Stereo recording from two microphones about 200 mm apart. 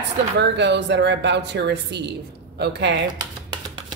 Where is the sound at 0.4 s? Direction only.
60° right (ahead or behind).